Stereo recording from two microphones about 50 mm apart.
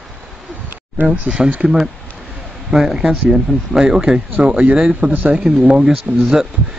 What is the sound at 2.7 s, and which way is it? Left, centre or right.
Speech, centre.